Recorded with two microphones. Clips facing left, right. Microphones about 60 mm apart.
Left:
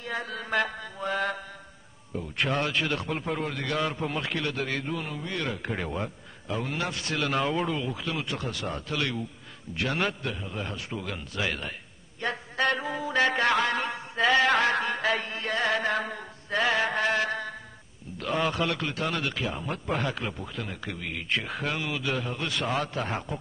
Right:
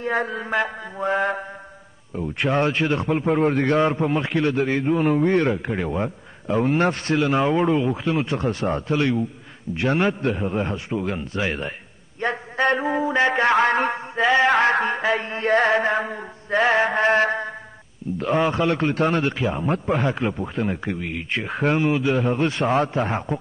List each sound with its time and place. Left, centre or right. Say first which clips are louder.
0.0 s a man's voice: right 9 dB; right; by 0.7 s centre
0.9 s a man's voice: right 7 dB; right
3.3 s a man's voice: right 14 dB; right
5.0 s speech: right 14 dB; right
5.6 s a man's voice: right 6 dB; centre
5.9 s a sound: right 7 dB; right
6.5 s speech: right 11 dB; right
7.2 s a man's voice: right 6 dB; right
10.3 s a man's voice: right 11 dB; right
14.1 s speech: right 4 dB; right